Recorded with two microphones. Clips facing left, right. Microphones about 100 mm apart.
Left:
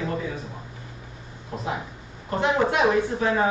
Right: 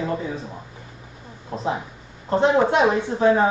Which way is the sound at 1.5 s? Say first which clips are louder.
Right 4 dB; 35° right (ahead or behind).